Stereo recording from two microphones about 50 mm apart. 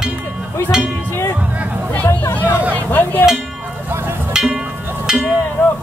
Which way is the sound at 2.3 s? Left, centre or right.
Left.